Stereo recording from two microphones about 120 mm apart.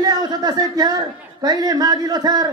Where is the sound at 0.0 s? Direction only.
35° right (ahead or behind).